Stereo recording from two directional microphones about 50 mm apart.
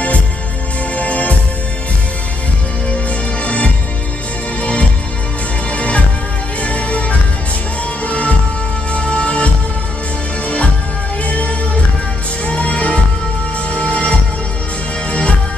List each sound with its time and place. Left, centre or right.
0.9 s music: left
3.4 s music: left
11.2 s music: left